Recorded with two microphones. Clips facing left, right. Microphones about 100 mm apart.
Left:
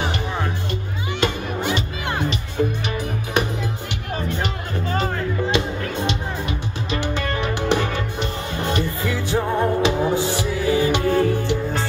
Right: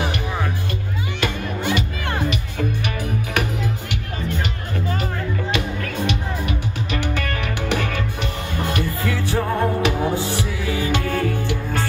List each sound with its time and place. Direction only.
1.2 s music: 25° left (ahead or behind)
5.5 s music: 25° left (ahead or behind)